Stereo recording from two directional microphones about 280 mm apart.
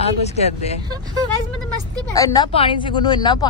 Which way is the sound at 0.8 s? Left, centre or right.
Centre.